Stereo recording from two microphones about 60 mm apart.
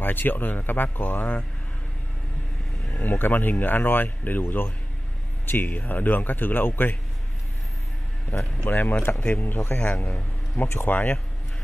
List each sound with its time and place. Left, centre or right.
0.0 s speech: left
3.0 s speech: left
8.3 s speech: left
10.6 s speech: centre
10.9 s speech: left